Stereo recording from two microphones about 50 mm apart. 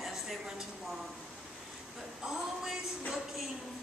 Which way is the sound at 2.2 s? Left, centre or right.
Centre.